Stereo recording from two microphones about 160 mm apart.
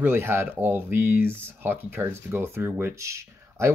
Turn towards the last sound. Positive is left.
turn(degrees=-15)  # may be behind; listen again after turning